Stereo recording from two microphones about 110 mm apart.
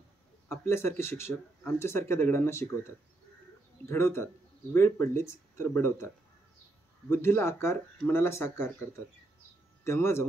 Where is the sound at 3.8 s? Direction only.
20° left (ahead or behind).